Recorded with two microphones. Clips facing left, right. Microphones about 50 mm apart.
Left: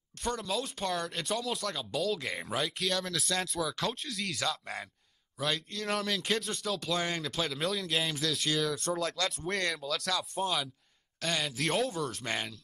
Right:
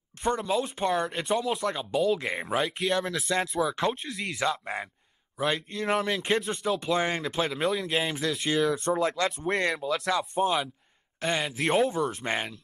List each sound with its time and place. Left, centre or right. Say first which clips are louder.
0.2 s speech: right 7 dB; right
5.4 s speech: right 5 dB; right